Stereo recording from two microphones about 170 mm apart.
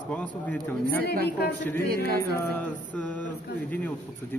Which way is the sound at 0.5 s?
55° right (ahead or behind).